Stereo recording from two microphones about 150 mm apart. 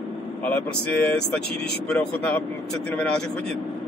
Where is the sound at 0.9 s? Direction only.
10° left (ahead or behind).